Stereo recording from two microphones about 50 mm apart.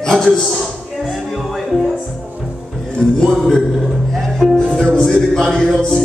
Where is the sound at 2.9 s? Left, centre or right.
Centre.